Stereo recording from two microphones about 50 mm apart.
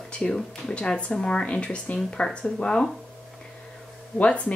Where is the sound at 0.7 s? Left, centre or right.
Centre.